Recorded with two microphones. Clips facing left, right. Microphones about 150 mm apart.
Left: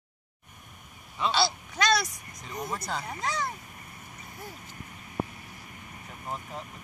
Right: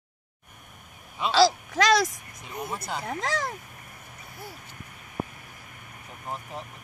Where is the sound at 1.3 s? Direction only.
90° right.